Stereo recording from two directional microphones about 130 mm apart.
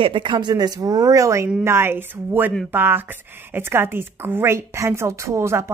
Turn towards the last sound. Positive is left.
turn(degrees=-20)  # may be behind; listen again after turning